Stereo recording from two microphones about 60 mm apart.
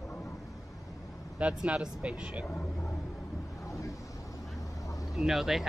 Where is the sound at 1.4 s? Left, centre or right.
Centre.